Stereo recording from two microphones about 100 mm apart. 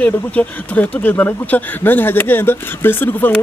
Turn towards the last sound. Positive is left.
turn(degrees=20)  # may be behind; listen again after turning